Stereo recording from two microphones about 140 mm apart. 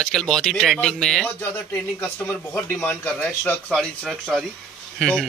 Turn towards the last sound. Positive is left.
turn(degrees=0)  # may be behind; listen again after turning